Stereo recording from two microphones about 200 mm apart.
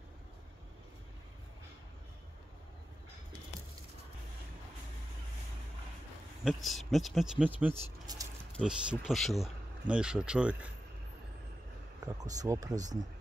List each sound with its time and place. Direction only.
6.4 s speech: centre (ahead or behind)
12.2 s speech: 20° right (ahead or behind)